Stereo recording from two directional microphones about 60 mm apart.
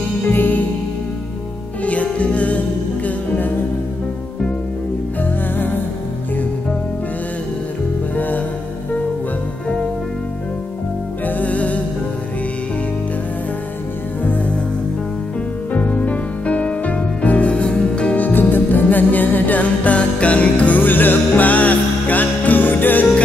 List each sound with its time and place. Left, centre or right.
0.2 s music: left
2.1 s music: left
5.2 s music: left
11.2 s music: left
15.7 s music: left
18.2 s music: left